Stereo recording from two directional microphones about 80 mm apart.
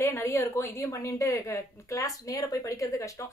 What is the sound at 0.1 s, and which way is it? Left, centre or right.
A woman's voice, left.